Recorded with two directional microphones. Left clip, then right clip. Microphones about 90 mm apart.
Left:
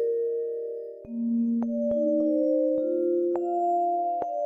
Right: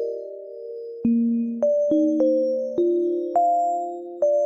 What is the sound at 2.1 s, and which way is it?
Music, 15° left (ahead or behind).